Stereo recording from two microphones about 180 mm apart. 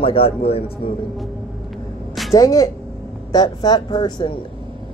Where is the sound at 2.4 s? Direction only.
20° left (ahead or behind).